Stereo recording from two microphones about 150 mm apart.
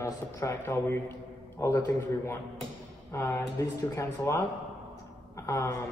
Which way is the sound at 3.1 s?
20° left (ahead or behind).